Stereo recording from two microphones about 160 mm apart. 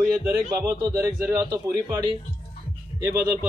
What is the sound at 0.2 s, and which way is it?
A man's voice, 15° right (ahead or behind).